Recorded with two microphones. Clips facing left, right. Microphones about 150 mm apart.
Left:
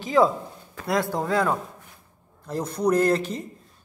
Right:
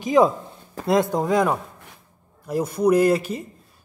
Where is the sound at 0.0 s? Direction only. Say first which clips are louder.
Right 3 dB; 15° right (ahead or behind).